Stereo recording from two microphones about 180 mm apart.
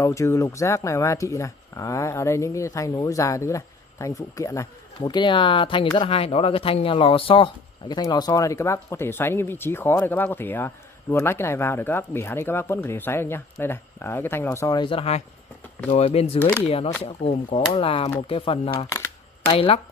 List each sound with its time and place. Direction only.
0.0 s speech: 15° left (ahead or behind); by 16.3 s 35° left (ahead or behind)
16.3 s speech: 10° left (ahead or behind)
16.6 s speech: 30° left (ahead or behind)